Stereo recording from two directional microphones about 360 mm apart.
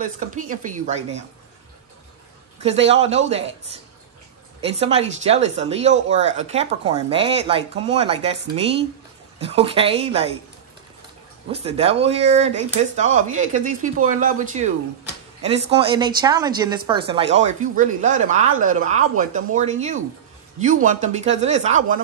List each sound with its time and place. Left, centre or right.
0.0 s speech: right
2.9 s speech: centre
4.6 s speech: centre
11.5 s speech: centre